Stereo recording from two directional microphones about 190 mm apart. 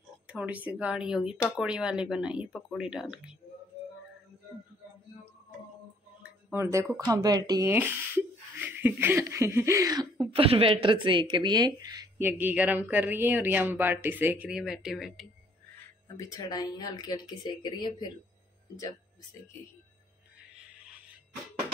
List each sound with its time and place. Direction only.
0.3 s speech: 5° right (ahead or behind)
6.2 s speech: 10° right (ahead or behind)
16.1 s speech: 20° left (ahead or behind)